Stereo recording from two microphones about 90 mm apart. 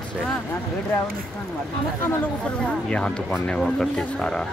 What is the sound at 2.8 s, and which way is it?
Speech, 10° left (ahead or behind).